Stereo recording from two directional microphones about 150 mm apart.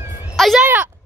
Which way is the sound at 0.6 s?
10° right (ahead or behind).